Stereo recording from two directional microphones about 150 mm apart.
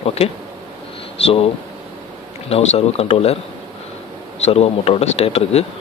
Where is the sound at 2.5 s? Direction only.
45° left (ahead or behind).